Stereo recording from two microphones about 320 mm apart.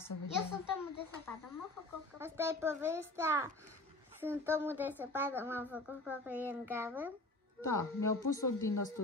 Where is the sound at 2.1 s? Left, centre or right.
Centre.